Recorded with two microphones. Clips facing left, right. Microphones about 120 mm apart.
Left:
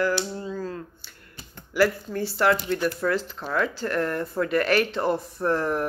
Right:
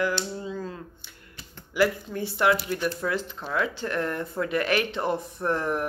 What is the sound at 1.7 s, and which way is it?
Speech, 20° right (ahead or behind).